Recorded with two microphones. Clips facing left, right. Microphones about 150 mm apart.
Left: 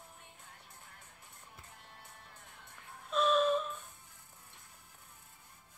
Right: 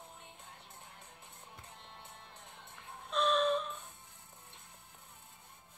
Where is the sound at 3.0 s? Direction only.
5° left (ahead or behind).